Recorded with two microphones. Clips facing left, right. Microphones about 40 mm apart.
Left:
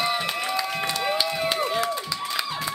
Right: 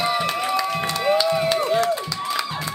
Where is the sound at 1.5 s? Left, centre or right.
Centre.